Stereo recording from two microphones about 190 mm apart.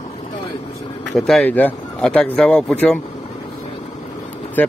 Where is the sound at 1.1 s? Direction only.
Centre (ahead or behind).